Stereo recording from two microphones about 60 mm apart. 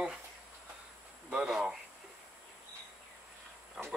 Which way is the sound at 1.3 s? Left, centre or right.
Centre.